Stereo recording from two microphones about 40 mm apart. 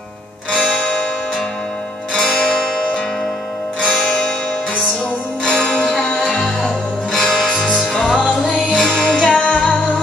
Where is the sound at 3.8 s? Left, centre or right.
Centre.